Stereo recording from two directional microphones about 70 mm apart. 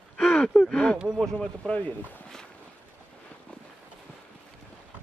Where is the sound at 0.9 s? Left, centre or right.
Centre.